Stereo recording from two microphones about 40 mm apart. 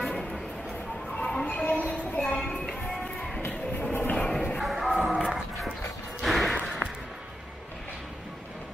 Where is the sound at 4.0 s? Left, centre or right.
Left.